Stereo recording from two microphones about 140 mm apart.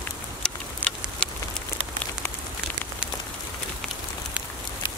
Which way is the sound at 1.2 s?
5° left (ahead or behind).